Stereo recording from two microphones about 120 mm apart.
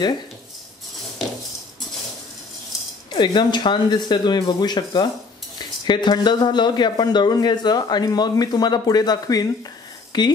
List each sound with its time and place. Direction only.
3.1 s speech: 40° left (ahead or behind)